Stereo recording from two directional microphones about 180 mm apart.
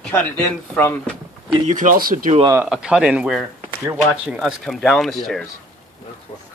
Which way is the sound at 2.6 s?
5° right (ahead or behind).